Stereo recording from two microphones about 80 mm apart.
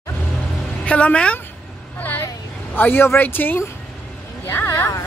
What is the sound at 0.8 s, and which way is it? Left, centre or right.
Speech, centre.